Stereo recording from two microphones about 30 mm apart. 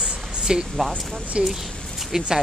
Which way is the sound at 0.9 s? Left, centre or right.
Right.